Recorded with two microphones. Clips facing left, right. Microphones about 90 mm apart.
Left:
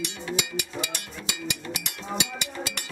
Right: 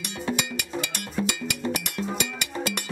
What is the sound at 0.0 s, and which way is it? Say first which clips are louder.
Music: right 2 dB; 50° right (ahead or behind).